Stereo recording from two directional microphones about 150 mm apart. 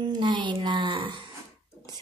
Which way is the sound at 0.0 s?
30° right (ahead or behind).